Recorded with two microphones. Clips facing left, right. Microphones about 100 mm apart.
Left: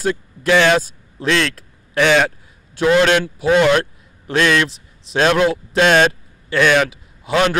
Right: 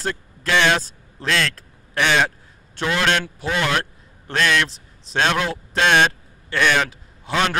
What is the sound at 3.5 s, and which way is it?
Speech, 20° left (ahead or behind).